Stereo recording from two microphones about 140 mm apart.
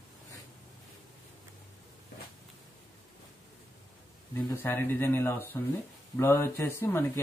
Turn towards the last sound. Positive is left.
turn(degrees=15)  # may be behind; listen again after turning